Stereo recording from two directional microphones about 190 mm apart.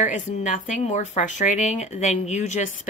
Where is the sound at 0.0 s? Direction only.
40° left (ahead or behind).